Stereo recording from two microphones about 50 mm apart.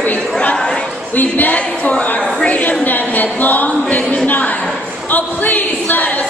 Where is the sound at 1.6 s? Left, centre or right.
Left.